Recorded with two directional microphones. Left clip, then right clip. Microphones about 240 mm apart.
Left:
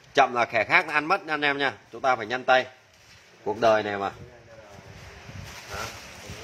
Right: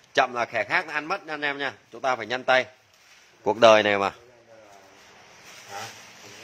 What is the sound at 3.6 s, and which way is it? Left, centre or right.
Speech, right.